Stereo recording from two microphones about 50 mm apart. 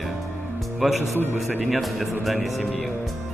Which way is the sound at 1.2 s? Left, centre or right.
Right.